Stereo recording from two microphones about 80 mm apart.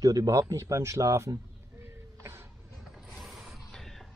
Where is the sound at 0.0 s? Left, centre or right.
Right.